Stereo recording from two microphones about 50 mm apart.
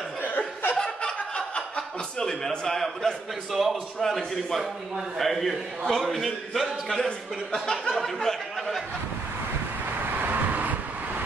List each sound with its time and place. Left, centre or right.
0.2 s chuckle: left
0.7 s a sound: centre
1.8 s a man's voice: centre
3.5 s a man's voice: centre
7.9 s a sound: centre
10.2 s vehicle: right